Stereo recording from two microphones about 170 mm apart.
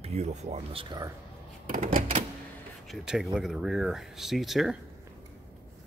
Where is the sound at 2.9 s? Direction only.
Centre (ahead or behind).